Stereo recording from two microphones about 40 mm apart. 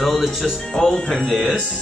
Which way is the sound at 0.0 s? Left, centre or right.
Centre.